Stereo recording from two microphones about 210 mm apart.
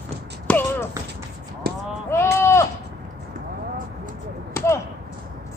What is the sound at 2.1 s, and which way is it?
Sheep, 10° left (ahead or behind).